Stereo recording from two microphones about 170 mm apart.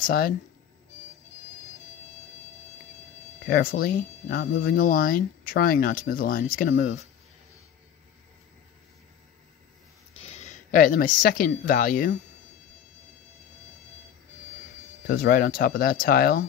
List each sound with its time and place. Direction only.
0.0 s speech: 60° left (ahead or behind)
3.4 s speech: 60° left (ahead or behind)
10.2 s speech: 40° left (ahead or behind)
15.0 s speech: 60° left (ahead or behind)